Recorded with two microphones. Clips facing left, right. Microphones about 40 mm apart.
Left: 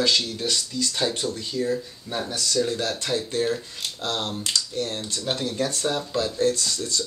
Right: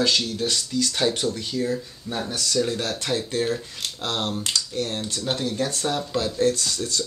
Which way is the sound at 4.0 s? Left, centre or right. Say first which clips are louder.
Right 1 dB; right.